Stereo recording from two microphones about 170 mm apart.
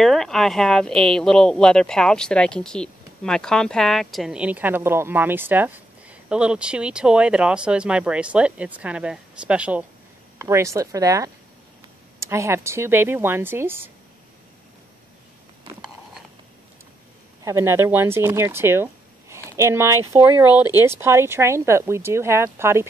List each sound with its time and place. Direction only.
0.0 s speech: centre (ahead or behind)
10.4 s speech: 15° right (ahead or behind)
17.4 s speech: 15° right (ahead or behind)